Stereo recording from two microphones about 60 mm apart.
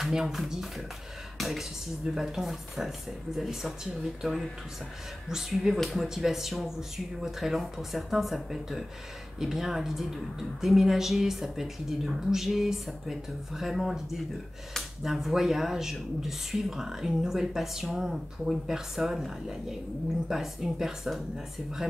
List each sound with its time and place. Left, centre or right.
0.0 s speech: centre